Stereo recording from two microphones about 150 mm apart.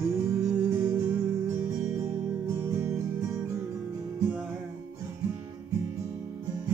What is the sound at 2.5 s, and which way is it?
Music, 15° right (ahead or behind).